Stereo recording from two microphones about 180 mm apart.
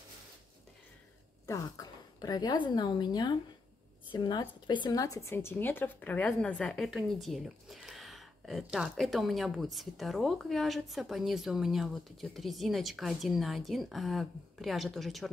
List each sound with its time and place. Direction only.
1.4 s a woman's voice: 20° left (ahead or behind); by 15.3 s centre (ahead or behind)